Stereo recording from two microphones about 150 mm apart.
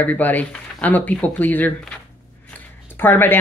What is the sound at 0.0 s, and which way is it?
Speech, 10° left (ahead or behind).